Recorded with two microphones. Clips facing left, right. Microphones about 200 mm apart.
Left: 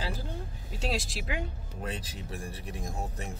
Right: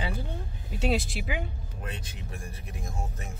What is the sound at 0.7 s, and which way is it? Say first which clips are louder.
Speech: right 6 dB; centre (ahead or behind).